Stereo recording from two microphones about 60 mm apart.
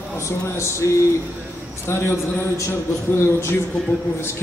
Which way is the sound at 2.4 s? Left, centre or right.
Left.